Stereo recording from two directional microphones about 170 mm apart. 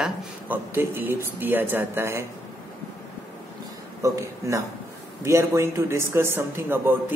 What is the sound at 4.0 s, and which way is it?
Speech, 15° right (ahead or behind).